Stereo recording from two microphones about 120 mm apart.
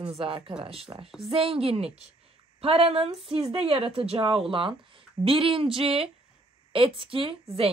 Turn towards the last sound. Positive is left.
turn(degrees=-45)  # may be behind; listen again after turning